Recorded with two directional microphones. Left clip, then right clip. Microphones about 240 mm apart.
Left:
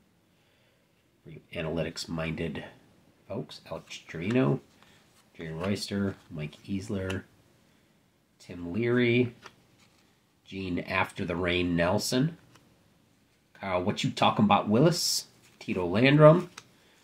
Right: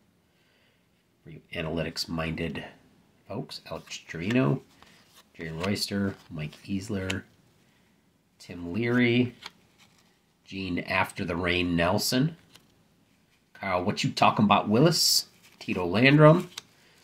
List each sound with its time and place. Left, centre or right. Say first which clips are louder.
1.3 s speech: right 1 dB; centre
5.3 s speech: right 2 dB; centre
8.4 s speech: right 1 dB; centre
10.4 s speech: right 2 dB; centre
13.5 s speech: right 2 dB; centre
16.6 s a sound: right 6 dB; right